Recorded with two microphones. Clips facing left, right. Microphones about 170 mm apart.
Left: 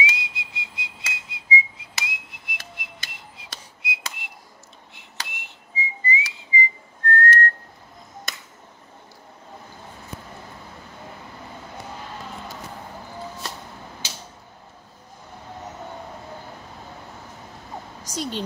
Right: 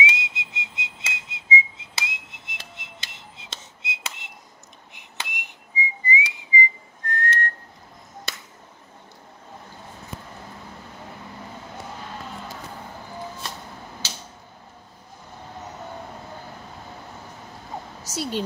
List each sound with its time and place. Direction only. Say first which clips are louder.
0.0 s whistling: right 2 dB; 20° right (ahead or behind)
18.0 s a woman's voice: right 1 dB; 5° right (ahead or behind)